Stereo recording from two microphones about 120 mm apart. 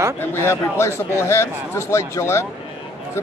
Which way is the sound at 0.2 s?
20° left (ahead or behind).